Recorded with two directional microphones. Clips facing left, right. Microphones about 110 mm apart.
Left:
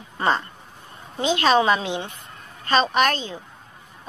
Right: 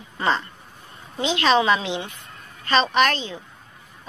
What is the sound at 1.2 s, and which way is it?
A woman's voice, 45° left (ahead or behind).